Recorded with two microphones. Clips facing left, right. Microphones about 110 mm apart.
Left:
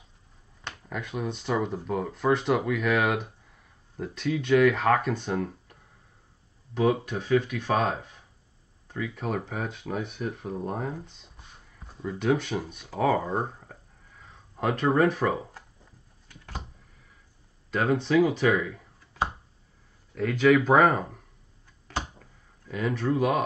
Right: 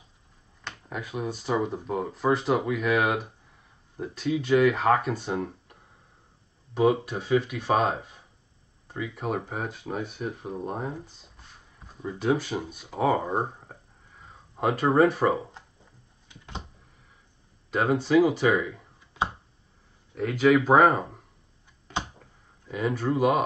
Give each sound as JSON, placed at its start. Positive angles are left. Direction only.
{"t": 0.9, "sound": "speech", "side_deg": -5}
{"t": 10.2, "sound": "speech", "side_deg": 0}
{"t": 13.1, "sound": "speech", "side_deg": -15}
{"t": 14.7, "sound": "speech", "side_deg": -5}
{"t": 17.7, "sound": "speech", "side_deg": -10}
{"t": 20.2, "sound": "speech", "side_deg": -5}
{"t": 22.7, "sound": "speech", "side_deg": -5}